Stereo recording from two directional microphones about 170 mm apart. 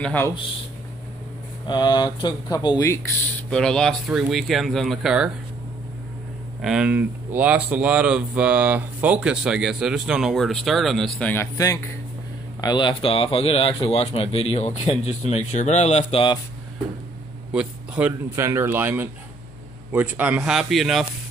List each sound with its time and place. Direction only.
0.0 s speech: 10° left (ahead or behind)
1.7 s speech: 25° left (ahead or behind)
3.4 s speech: 5° left (ahead or behind)
6.6 s speech: 5° right (ahead or behind)
11.5 s speech: 20° left (ahead or behind)
17.5 s speech: 5° right (ahead or behind)